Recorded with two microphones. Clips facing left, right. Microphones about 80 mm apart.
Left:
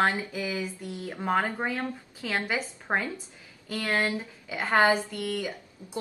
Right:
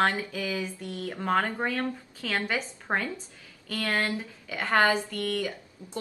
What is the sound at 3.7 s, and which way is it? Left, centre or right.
A woman's voice, centre.